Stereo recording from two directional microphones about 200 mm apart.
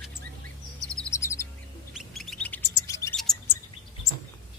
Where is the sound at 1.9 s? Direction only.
Centre (ahead or behind).